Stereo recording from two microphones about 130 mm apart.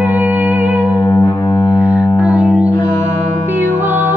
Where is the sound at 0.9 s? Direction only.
30° left (ahead or behind).